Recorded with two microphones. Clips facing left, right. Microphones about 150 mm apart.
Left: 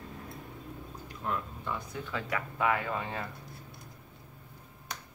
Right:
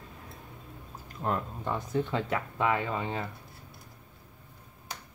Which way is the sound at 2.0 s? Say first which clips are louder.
Right 4 dB; 25° right (ahead or behind).